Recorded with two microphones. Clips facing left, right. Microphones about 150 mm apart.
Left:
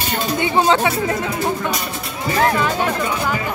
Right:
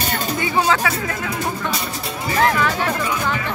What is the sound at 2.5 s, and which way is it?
Music, 20° left (ahead or behind).